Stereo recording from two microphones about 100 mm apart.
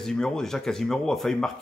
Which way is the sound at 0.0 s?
5° left (ahead or behind).